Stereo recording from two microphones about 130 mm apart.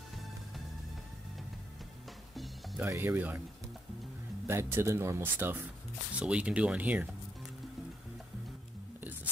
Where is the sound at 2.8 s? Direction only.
15° right (ahead or behind).